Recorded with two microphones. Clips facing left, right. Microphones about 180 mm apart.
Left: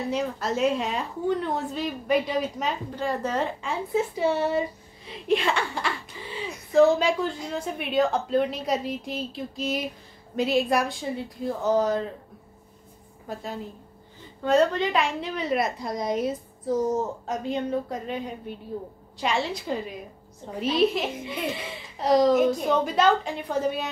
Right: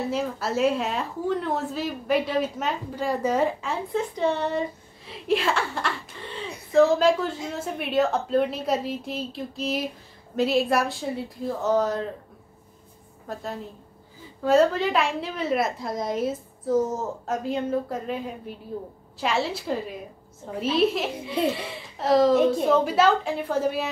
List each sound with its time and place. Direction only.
0.1 s a woman's voice: 5° right (ahead or behind)
3.9 s a woman's voice: 10° left (ahead or behind)
13.3 s a woman's voice: centre (ahead or behind)
21.3 s speech: 30° right (ahead or behind)
21.6 s a woman's voice: centre (ahead or behind)